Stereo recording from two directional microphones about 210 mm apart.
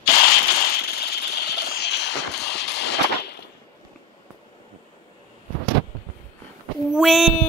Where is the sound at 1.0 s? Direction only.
50° left (ahead or behind).